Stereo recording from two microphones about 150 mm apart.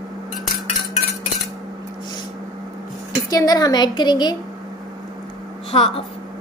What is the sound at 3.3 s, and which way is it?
A woman's voice, 25° left (ahead or behind).